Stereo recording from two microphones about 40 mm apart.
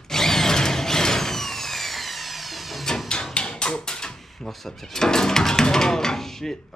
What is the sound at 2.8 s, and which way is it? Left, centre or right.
Hammer, centre.